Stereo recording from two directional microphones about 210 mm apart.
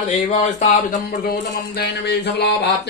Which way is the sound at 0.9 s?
50° left (ahead or behind).